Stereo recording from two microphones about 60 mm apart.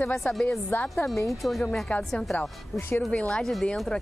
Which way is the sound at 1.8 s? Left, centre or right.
Left.